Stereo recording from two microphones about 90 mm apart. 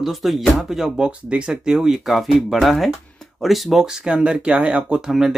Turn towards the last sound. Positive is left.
turn(degrees=-5)  # may be behind; listen again after turning